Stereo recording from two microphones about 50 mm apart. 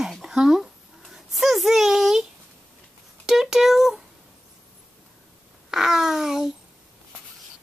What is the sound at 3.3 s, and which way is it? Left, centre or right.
Speech, centre.